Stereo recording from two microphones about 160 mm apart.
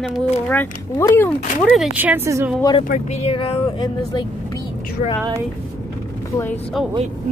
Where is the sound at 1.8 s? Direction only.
10° right (ahead or behind).